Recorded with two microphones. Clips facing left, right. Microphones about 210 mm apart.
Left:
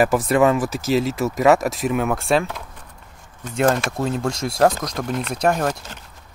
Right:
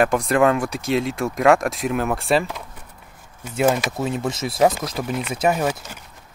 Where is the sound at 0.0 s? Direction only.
5° left (ahead or behind).